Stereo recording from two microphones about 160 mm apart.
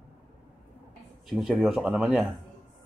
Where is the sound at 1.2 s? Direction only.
Centre (ahead or behind).